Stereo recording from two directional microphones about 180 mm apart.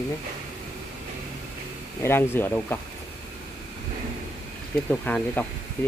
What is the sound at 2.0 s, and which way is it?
Speech, 15° left (ahead or behind).